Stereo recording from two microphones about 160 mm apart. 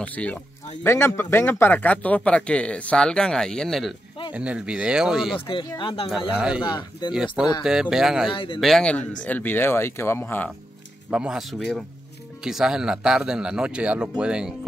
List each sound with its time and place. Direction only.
0.0 s a man's voice: 10° left (ahead or behind)
5.3 s speech: 30° left (ahead or behind)
6.0 s speech: 5° right (ahead or behind)
6.6 s speech: 25° left (ahead or behind)
7.6 s speech: 5° right (ahead or behind)
8.3 s speech: 35° left (ahead or behind)
8.5 s a man's voice: centre (ahead or behind)
11.1 s speech: 5° right (ahead or behind)